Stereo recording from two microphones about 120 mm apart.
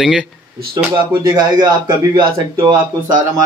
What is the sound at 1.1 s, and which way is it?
Speech, 35° right (ahead or behind).